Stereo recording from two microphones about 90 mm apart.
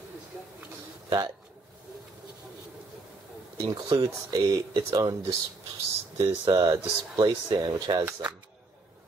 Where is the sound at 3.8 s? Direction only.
45° right (ahead or behind).